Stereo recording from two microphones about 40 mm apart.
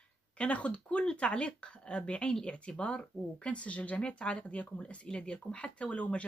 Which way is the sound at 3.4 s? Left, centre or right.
Left.